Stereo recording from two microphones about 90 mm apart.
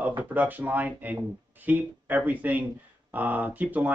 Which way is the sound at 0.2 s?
20° right (ahead or behind).